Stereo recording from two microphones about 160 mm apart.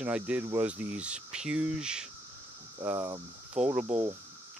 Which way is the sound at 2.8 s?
20° right (ahead or behind).